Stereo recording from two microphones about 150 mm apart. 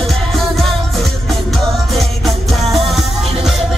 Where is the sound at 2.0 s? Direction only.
Centre (ahead or behind).